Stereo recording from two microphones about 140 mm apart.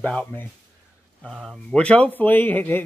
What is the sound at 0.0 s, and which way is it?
Speech, 10° left (ahead or behind).